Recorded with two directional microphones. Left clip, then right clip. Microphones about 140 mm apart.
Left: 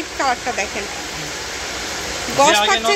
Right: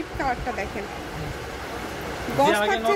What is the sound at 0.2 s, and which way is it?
Speech, 20° left (ahead or behind).